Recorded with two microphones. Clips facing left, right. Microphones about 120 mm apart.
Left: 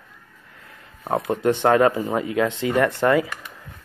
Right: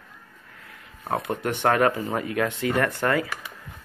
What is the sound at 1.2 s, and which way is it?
Speech, 20° left (ahead or behind).